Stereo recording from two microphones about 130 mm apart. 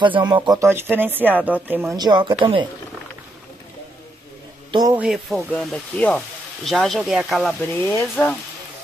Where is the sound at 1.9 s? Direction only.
35° right (ahead or behind).